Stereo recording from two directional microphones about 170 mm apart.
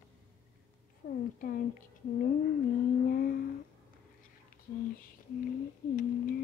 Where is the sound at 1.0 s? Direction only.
65° left (ahead or behind).